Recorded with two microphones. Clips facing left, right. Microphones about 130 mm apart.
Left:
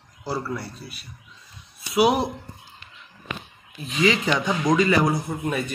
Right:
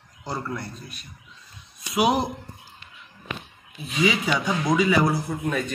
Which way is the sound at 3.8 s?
Centre (ahead or behind).